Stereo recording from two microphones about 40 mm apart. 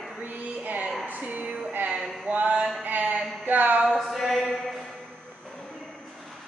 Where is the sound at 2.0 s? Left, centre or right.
Centre.